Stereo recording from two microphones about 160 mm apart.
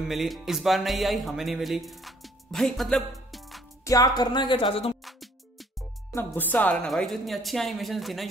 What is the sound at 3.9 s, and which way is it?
Speech, 25° left (ahead or behind).